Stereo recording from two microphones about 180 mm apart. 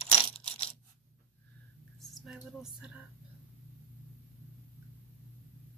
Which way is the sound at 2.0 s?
Centre (ahead or behind).